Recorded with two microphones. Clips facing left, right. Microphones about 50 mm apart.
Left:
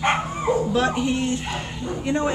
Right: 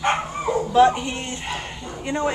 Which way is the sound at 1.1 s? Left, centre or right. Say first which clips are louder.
Left 7 dB; right.